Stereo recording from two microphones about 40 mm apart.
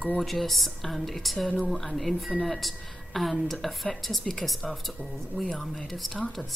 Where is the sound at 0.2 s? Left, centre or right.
Centre.